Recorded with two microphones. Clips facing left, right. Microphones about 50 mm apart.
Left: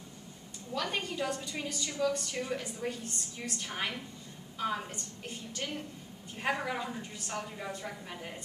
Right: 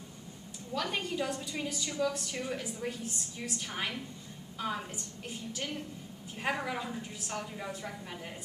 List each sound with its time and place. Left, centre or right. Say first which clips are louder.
0.7 s a woman's voice: right 1 dB; centre